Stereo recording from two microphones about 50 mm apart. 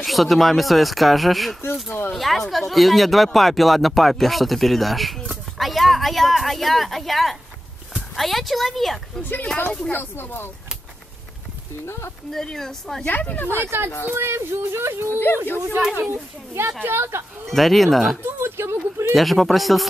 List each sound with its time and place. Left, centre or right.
0.0 s speech: centre
1.9 s speech: left
2.1 s speech: centre
9.2 s speech: left
11.8 s speech: left
12.3 s speech: centre
13.1 s speech: left
13.7 s speech: right
17.5 s speech: centre
18.2 s speech: right
19.1 s speech: centre